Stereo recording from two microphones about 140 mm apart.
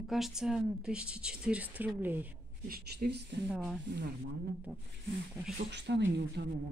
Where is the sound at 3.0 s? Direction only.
90° right.